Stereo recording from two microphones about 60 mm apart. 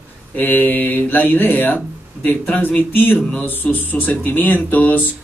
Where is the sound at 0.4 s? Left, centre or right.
Left.